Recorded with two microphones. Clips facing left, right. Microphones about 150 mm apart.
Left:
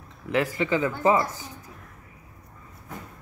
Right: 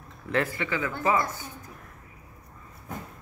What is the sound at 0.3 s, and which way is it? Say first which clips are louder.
Speech: left 4 dB; 15° left (ahead or behind).